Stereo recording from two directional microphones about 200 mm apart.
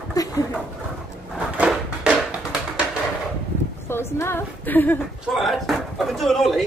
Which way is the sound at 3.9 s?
10° left (ahead or behind).